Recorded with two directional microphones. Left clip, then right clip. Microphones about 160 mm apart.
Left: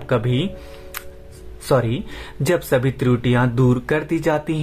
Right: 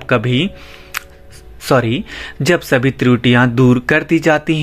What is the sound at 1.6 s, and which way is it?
Speech, 25° right (ahead or behind).